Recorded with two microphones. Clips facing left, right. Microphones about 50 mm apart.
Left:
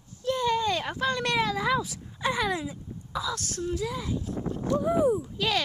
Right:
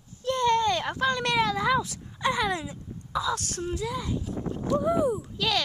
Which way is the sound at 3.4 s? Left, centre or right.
Right.